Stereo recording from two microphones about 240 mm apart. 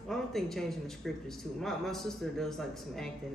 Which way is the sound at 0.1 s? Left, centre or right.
Centre.